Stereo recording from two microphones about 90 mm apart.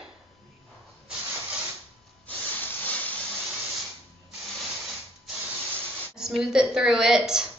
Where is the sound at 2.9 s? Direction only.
15° left (ahead or behind).